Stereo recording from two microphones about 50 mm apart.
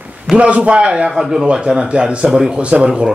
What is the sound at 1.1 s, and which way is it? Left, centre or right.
Speech, centre.